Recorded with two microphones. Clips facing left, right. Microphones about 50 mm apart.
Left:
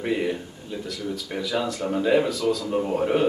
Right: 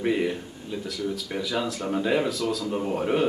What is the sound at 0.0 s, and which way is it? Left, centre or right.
Speech, centre.